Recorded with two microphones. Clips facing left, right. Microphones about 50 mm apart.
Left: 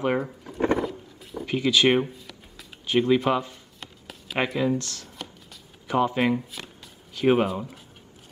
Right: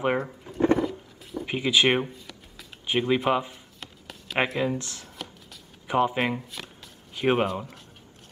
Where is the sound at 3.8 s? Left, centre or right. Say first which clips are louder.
Even; centre.